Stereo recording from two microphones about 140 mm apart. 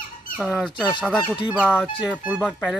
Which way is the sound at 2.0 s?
5° right (ahead or behind).